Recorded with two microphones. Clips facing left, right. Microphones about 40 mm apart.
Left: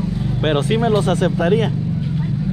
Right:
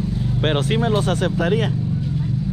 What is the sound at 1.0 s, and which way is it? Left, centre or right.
Speech, left.